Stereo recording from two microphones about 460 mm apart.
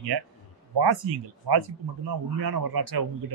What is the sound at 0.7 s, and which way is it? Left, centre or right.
A man's voice, right.